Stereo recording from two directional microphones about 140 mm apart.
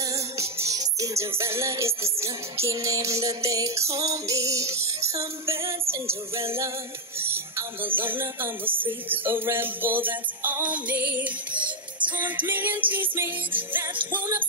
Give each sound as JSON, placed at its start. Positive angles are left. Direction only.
{"t": 0.6, "sound": "music", "side_deg": -25}